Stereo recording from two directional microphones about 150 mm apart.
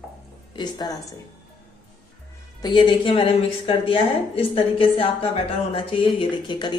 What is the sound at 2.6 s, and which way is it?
A woman's voice, 30° left (ahead or behind).